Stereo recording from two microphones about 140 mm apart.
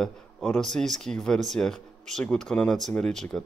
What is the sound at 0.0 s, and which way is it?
Speech, 5° left (ahead or behind).